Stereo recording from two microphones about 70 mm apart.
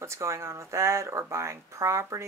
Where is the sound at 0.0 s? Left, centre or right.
Right.